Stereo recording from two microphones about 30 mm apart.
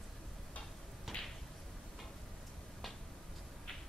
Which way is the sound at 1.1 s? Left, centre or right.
Centre.